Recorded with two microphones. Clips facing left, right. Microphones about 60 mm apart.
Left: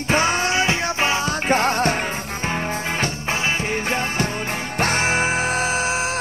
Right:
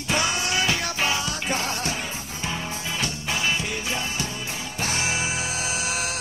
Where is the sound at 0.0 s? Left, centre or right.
Left.